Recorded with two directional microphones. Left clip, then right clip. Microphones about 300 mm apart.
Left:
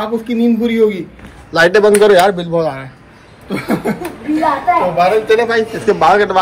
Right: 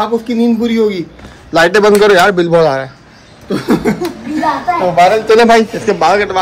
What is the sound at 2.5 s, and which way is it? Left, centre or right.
Speech, right.